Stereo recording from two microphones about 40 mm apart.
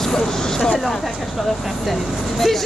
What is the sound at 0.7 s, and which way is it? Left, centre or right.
Speech, centre.